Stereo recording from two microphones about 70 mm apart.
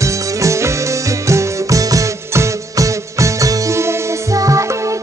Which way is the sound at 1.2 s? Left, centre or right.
Right.